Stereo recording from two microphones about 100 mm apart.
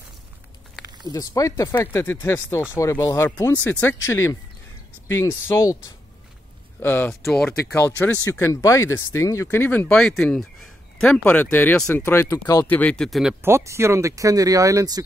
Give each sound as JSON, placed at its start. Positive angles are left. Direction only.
{"t": 0.8, "sound": "a sound", "side_deg": -45}
{"t": 1.1, "sound": "speech", "side_deg": 35}
{"t": 1.8, "sound": "speech", "side_deg": 20}
{"t": 3.3, "sound": "speech", "side_deg": 20}
{"t": 6.8, "sound": "speech", "side_deg": 20}
{"t": 7.1, "sound": "speech", "side_deg": 5}
{"t": 7.7, "sound": "speech", "side_deg": 25}
{"t": 13.4, "sound": "speech", "side_deg": -25}